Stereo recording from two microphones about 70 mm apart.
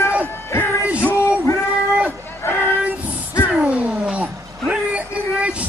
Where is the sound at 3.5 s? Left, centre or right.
Centre.